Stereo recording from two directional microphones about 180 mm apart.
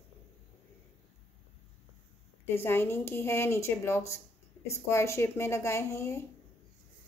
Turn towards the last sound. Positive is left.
turn(degrees=15)  # may be behind; listen again after turning